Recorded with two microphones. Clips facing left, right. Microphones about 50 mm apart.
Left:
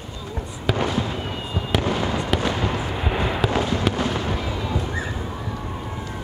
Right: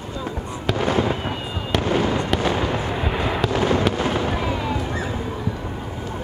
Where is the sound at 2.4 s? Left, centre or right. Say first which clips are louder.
Right 2 dB; right.